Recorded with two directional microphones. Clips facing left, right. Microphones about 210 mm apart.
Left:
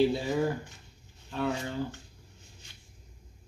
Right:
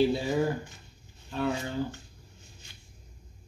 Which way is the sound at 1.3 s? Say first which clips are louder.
Right 1 dB; centre (ahead or behind).